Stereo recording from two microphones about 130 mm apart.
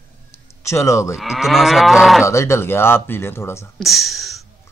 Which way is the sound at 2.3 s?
20° left (ahead or behind).